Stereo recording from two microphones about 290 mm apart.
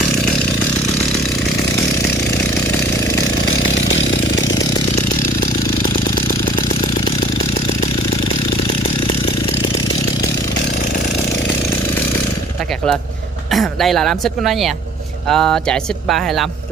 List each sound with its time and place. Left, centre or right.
3.4 s chainsaw: left
13.5 s speech: centre